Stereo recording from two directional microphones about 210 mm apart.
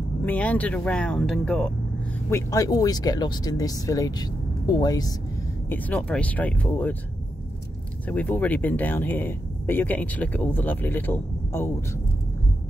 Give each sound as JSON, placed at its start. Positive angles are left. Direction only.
{"t": 0.2, "sound": "speech", "side_deg": 5}
{"t": 2.2, "sound": "speech", "side_deg": 15}
{"t": 5.7, "sound": "speech", "side_deg": 10}
{"t": 8.1, "sound": "speech", "side_deg": 5}